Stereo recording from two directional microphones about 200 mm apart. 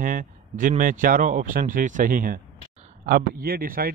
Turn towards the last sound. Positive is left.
turn(degrees=-50)  # may be behind; listen again after turning